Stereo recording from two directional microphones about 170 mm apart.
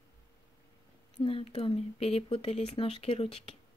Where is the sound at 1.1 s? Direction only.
35° left (ahead or behind).